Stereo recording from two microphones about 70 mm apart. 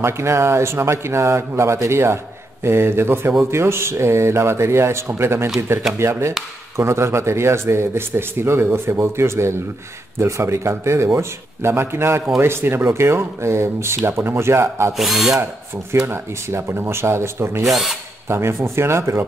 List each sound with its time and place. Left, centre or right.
0.0 s speech: right
15.0 s speech: centre
16.1 s speech: right
17.6 s speech: centre
18.3 s speech: right